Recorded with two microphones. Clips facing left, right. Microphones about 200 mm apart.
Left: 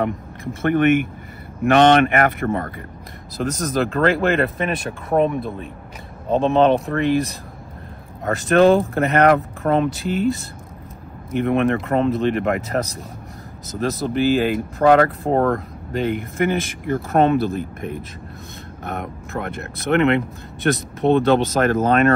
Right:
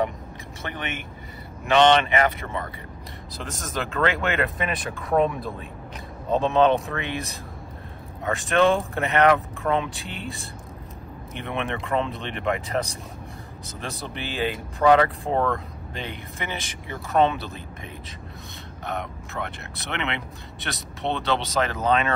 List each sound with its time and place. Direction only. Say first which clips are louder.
0.0 s speech: left 4 dB; 55° left (ahead or behind); by 4.5 s 35° left (ahead or behind)
6.3 s speech: left 4 dB; 35° left (ahead or behind)
7.0 s speech: left 12 dB; centre (ahead or behind)
8.2 s speech: left 6 dB; 40° left (ahead or behind)
9.8 s speech: left 14 dB; centre (ahead or behind)
11.3 s speech: left 12 dB; 45° left (ahead or behind)